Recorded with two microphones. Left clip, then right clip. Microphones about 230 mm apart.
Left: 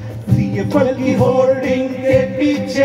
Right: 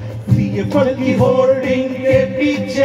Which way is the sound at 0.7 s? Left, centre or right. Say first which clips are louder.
Even; left.